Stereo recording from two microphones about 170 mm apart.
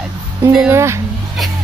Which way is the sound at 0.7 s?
15° right (ahead or behind).